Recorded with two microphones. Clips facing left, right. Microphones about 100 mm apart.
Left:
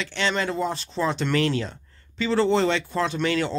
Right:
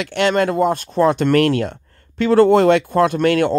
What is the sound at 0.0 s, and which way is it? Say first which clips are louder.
Speech: right 9 dB; 60° right (ahead or behind).